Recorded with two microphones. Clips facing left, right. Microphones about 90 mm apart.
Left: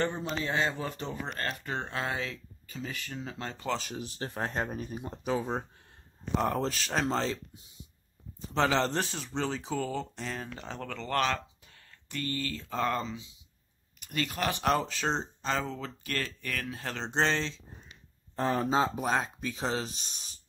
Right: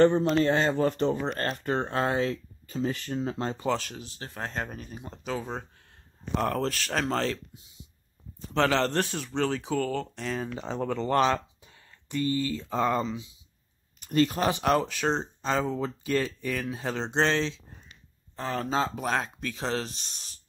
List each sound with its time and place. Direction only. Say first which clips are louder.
0.0 s speech: right 11 dB; 55° right (ahead or behind)
1.2 s speech: right 6 dB; 35° right (ahead or behind)
3.9 s speech: left 4 dB; 25° left (ahead or behind)
6.3 s a man's voice: right 2 dB; 5° left (ahead or behind)
8.5 s a man's voice: right 3 dB; centre (ahead or behind)
10.5 s speech: right 8 dB; 20° right (ahead or behind)
13.9 s speech: right 9 dB; 35° right (ahead or behind)
14.6 s speech: right 3 dB; centre (ahead or behind)
17.1 s a man's voice: right 3 dB; centre (ahead or behind)
18.5 s speech: even; 15° left (ahead or behind)
18.9 s a man's voice: right 1 dB; 5° left (ahead or behind)